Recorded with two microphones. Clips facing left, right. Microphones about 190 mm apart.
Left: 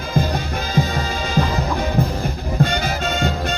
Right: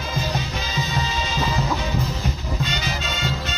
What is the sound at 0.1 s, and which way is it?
Music, 55° left (ahead or behind).